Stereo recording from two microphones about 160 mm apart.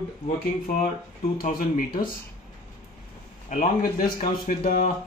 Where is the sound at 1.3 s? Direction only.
55° left (ahead or behind).